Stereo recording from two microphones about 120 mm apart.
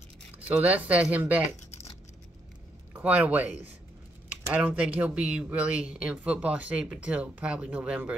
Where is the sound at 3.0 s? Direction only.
10° right (ahead or behind).